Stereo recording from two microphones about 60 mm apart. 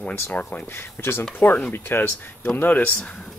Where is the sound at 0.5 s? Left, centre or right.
Left.